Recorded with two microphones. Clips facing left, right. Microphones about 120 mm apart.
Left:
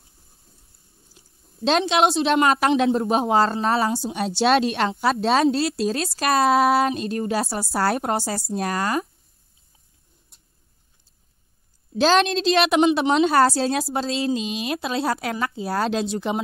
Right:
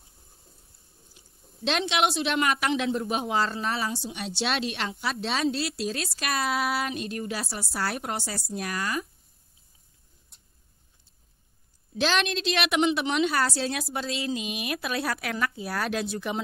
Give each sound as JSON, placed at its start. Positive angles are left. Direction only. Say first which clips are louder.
{"t": 1.6, "sound": "a woman's voice", "louder": "left 7 dB", "side_deg": 35}
{"t": 12.0, "sound": "a woman's voice", "louder": "left 8 dB", "side_deg": 35}